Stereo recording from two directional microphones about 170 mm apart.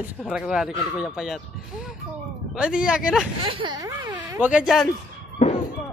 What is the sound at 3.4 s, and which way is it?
Speech, 30° right (ahead or behind).